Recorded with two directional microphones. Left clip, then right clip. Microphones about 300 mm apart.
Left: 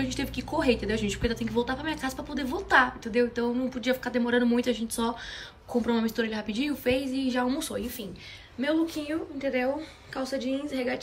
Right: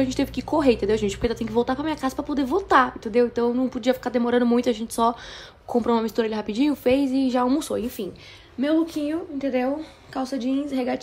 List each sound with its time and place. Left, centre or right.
0.0 s speech: centre